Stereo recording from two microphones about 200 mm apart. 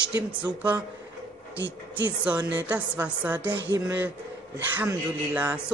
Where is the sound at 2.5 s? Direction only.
10° right (ahead or behind).